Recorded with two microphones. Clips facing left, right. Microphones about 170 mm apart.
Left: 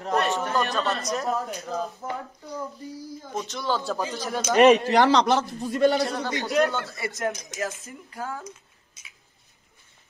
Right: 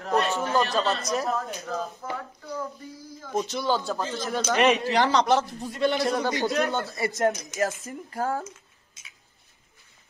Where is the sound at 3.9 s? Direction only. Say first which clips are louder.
Even; 15° left (ahead or behind).